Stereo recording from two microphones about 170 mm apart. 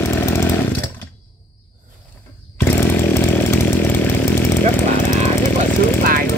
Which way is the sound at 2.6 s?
15° left (ahead or behind).